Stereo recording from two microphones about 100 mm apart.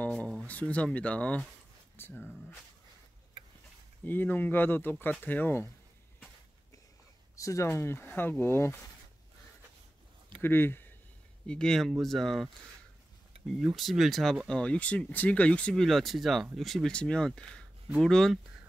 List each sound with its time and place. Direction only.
0.5 s speech: 15° left (ahead or behind)
4.0 s speech: 20° left (ahead or behind)
7.3 s speech: 30° left (ahead or behind)
10.4 s speech: 20° left (ahead or behind)
11.4 s speech: 5° left (ahead or behind)
13.5 s speech: centre (ahead or behind)
14.5 s speech: 10° left (ahead or behind)